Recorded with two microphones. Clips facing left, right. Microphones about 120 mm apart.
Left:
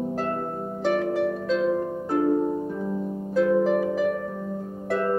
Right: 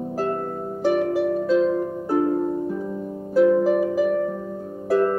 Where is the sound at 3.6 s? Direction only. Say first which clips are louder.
Right 2 dB; 10° right (ahead or behind).